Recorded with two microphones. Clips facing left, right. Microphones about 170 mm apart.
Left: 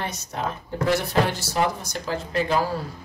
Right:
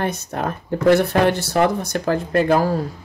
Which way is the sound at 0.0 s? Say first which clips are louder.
Right 6 dB; 55° right (ahead or behind).